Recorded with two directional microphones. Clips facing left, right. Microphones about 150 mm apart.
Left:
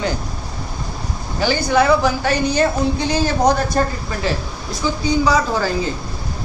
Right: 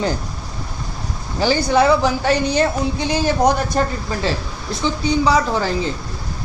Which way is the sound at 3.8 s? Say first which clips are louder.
Even; 20° right (ahead or behind).